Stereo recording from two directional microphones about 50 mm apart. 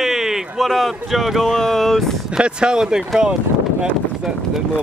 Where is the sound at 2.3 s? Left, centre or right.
Centre.